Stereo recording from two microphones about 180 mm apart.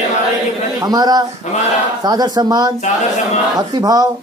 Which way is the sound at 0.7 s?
20° right (ahead or behind).